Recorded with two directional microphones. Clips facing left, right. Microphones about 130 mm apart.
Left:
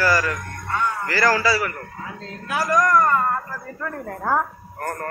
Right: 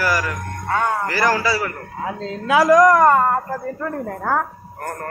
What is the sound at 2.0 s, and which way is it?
Speech, 90° right.